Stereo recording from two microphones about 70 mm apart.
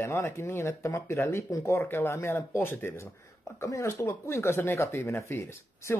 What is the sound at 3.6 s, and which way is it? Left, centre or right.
Speech, left.